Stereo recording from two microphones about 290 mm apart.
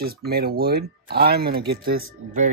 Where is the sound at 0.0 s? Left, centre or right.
Right.